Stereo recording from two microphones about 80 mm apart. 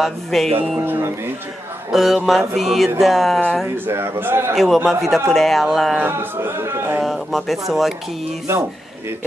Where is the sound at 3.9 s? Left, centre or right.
Right.